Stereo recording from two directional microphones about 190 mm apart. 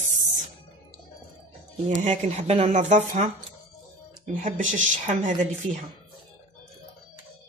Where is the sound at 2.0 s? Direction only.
35° right (ahead or behind).